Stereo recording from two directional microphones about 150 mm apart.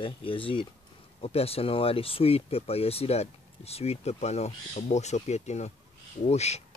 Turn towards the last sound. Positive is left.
turn(degrees=45)  # may be behind; listen again after turning